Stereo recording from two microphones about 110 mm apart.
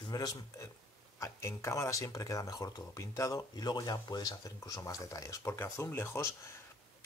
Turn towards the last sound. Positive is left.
turn(degrees=25)  # may be behind; listen again after turning